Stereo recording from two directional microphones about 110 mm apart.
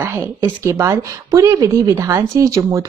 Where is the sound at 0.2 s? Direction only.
25° right (ahead or behind).